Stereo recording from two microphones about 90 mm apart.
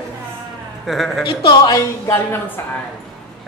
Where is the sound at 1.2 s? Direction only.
70° left (ahead or behind).